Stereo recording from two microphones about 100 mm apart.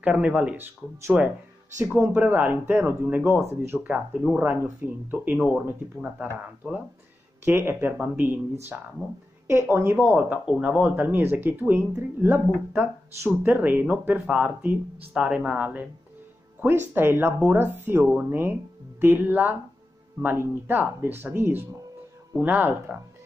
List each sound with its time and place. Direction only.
0.0 s speech: 15° right (ahead or behind)
1.1 s speech: 5° right (ahead or behind); by 3.8 s 25° right (ahead or behind)
3.8 s speech: 10° right (ahead or behind)
4.5 s speech: 25° right (ahead or behind)
6.6 s speech: centre (ahead or behind)
7.4 s speech: 25° right (ahead or behind)
9.5 s speech: 25° right (ahead or behind)
10.1 s speech: 15° right (ahead or behind)